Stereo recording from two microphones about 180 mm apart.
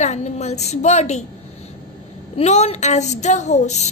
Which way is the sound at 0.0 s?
40° left (ahead or behind).